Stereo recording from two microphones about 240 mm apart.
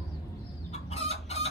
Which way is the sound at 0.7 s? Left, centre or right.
Left.